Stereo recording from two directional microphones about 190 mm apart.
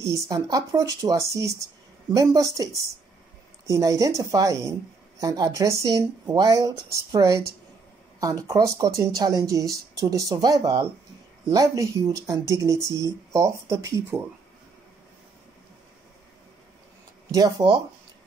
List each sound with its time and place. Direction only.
0.0 s speech: 15° right (ahead or behind)
17.3 s speech: 20° right (ahead or behind)